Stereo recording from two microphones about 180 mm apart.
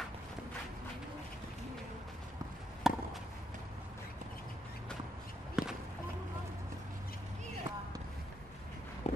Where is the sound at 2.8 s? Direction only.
Centre (ahead or behind).